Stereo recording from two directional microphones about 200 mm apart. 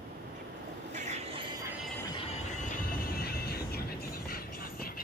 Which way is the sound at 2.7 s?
50° left (ahead or behind).